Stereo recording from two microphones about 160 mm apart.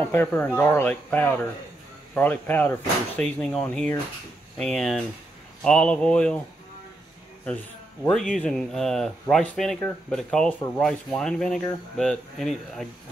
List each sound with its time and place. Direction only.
0.1 s speech: 10° left (ahead or behind)
7.4 s speech: 10° left (ahead or behind)